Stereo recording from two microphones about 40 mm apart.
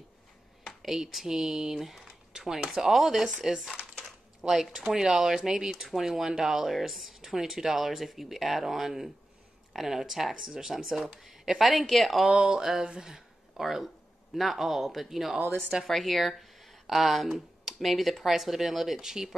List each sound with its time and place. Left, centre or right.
0.8 s speech: centre
4.0 s typing: centre
4.7 s speech: centre
12.3 s speech: right
12.5 s speech: centre
13.6 s speech: centre